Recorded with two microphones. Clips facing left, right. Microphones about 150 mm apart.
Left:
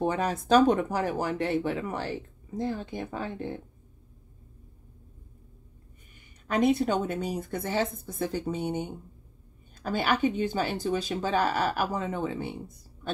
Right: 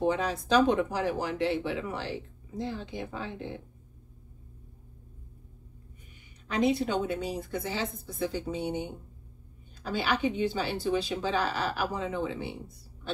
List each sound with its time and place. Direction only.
0.0 s speech: 50° left (ahead or behind)
6.4 s speech: 50° left (ahead or behind)